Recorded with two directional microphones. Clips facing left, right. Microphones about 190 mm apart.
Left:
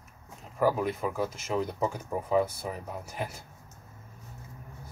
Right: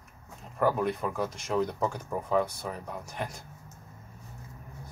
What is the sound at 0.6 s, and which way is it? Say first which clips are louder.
Speech: even; 5° left (ahead or behind).